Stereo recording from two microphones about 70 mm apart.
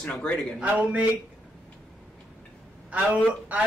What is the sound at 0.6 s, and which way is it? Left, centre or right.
Speech, centre.